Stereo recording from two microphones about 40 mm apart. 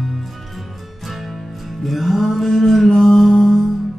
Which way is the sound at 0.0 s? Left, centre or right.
Centre.